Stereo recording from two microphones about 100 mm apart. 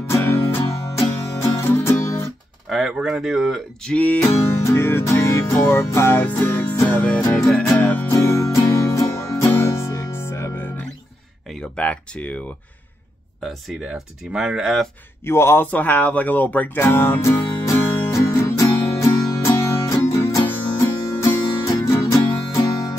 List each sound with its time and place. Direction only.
0.1 s music: 20° left (ahead or behind)
2.7 s speech: 5° right (ahead or behind)
3.9 s music: 15° left (ahead or behind)
8.1 s music: 25° left (ahead or behind)
11.7 s speech: 15° left (ahead or behind)
13.4 s speech: centre (ahead or behind)
15.2 s music: 25° left (ahead or behind)